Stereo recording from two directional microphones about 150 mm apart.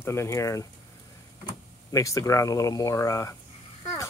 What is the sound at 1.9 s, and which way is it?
Speech, 20° left (ahead or behind).